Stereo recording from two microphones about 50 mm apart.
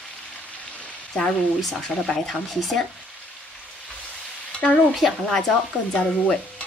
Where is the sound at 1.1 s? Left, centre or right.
Centre.